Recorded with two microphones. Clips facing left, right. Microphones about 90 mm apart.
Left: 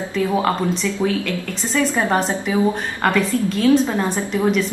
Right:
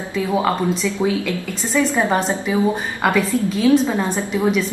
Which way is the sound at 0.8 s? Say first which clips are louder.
Right 1 dB; 15° right (ahead or behind).